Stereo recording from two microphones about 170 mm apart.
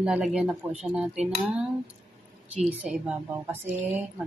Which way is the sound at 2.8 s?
10° right (ahead or behind).